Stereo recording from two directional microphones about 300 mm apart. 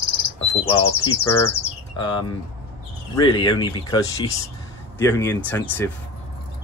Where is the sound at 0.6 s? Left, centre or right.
Centre.